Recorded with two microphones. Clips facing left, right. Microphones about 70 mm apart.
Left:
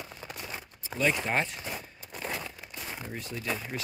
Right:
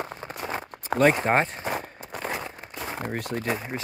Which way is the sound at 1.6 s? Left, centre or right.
Right.